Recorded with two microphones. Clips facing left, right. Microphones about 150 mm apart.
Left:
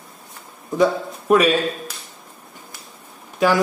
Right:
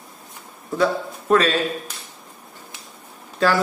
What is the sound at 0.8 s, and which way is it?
Speech, 15° left (ahead or behind).